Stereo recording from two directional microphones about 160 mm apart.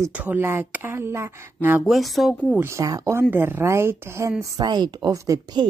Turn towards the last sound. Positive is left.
turn(degrees=-25)  # may be behind; listen again after turning